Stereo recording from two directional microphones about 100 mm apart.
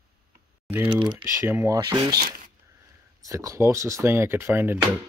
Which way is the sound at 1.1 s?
30° right (ahead or behind).